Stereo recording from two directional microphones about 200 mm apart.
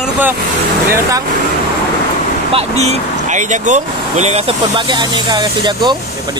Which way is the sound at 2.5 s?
30° right (ahead or behind).